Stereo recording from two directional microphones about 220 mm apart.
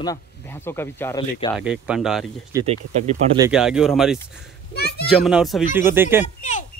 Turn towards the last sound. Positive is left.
turn(degrees=35)  # may be behind; listen again after turning